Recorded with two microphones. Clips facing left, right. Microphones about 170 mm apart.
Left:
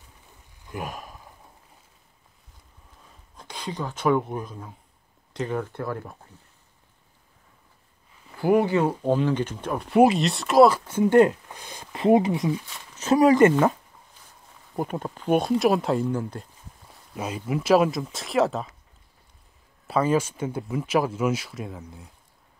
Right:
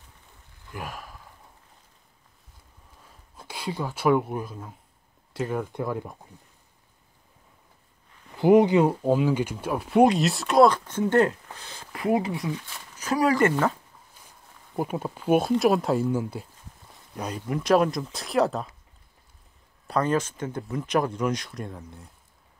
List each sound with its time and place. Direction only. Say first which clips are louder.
0.7 s a sound: left 3 dB; 20° left (ahead or behind)
3.3 s speech: right 1 dB; 5° right (ahead or behind)
8.4 s speech: right 3 dB; 20° right (ahead or behind); by 12.5 s 20° left (ahead or behind)
12.5 s speech: left 3 dB; centre (ahead or behind)
12.9 s speech: left 5 dB; 25° left (ahead or behind)
14.8 s speech: even; 5° right (ahead or behind)
17.1 s speech: left 2 dB; 5° left (ahead or behind)
19.9 s speech: left 2 dB; 5° left (ahead or behind)